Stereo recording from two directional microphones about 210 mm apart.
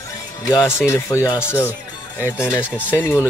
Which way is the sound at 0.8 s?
10° left (ahead or behind).